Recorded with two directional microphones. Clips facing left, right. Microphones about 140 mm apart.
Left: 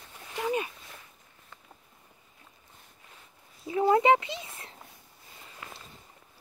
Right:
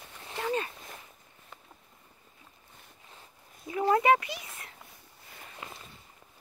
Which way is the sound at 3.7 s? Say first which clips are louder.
Left 2 dB; 25° left (ahead or behind).